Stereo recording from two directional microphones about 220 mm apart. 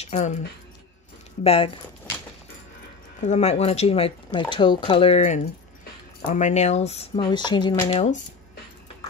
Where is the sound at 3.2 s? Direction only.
30° left (ahead or behind).